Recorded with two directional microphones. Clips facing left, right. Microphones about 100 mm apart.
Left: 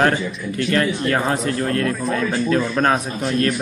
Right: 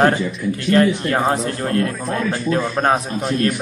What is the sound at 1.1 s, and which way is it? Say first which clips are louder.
Speech: right 1 dB; 30° right (ahead or behind).